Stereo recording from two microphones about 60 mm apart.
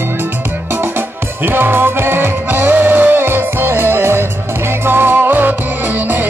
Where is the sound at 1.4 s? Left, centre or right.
Right.